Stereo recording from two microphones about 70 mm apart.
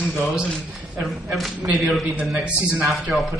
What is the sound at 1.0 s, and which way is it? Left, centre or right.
Speech, centre.